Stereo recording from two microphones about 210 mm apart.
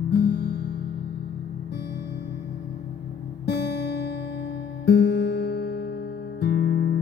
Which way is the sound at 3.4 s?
50° left (ahead or behind).